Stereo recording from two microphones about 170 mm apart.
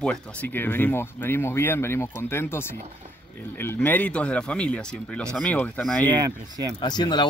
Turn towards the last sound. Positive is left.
turn(degrees=25)  # may be behind; listen again after turning